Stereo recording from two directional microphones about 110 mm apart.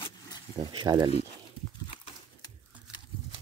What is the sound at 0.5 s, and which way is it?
Speech, 40° right (ahead or behind).